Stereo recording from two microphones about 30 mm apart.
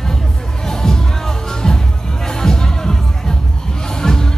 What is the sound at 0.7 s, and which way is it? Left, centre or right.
Music, centre.